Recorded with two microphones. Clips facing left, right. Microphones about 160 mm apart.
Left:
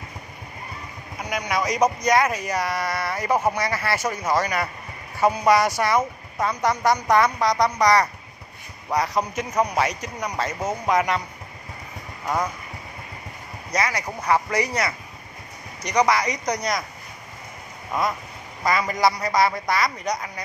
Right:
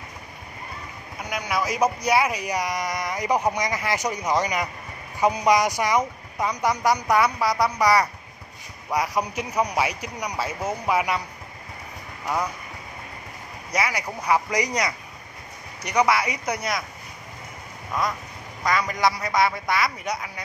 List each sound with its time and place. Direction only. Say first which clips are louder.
1.3 s speech: left 2 dB; centre (ahead or behind)
13.7 s speech: left 1 dB; 10° right (ahead or behind)
18.6 s a man's voice: left 2 dB; 5° left (ahead or behind)